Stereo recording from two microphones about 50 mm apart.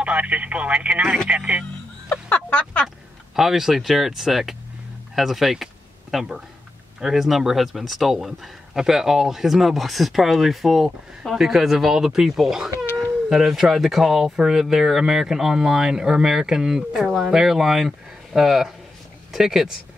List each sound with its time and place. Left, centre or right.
0.0 s speech: right
2.2 s a sound: left
3.3 s speech: centre